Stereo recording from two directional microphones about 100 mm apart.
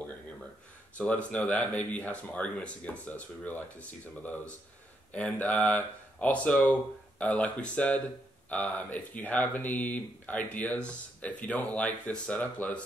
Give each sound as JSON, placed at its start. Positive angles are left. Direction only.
{"t": 0.9, "sound": "speech", "side_deg": 15}
{"t": 5.1, "sound": "speech", "side_deg": 15}